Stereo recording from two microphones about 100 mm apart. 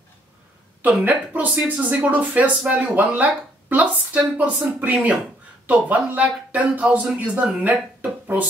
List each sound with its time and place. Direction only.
1.0 s speech: 15° right (ahead or behind)